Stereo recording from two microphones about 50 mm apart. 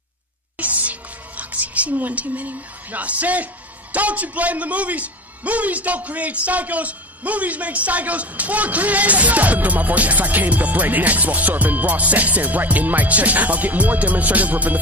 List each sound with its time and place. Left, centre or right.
0.6 s music: right
3.9 s a man's voice: right